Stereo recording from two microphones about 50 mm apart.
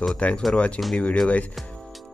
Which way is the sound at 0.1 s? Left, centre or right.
Left.